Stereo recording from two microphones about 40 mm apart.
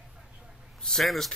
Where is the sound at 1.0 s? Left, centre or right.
Centre.